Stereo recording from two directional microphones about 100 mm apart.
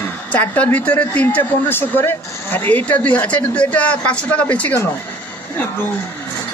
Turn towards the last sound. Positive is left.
turn(degrees=20)  # may be behind; listen again after turning